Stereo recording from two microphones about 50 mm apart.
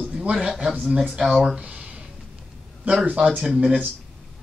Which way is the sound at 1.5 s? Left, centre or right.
Right.